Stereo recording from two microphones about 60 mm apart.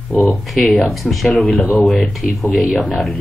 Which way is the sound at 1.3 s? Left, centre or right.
Left.